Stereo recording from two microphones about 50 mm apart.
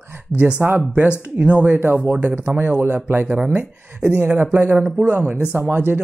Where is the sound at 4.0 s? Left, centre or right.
Right.